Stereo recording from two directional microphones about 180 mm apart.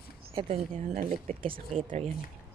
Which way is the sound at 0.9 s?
50° right (ahead or behind).